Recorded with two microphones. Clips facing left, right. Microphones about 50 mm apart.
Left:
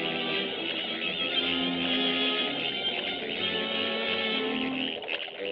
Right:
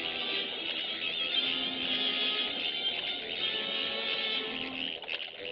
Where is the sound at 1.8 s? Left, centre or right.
Left.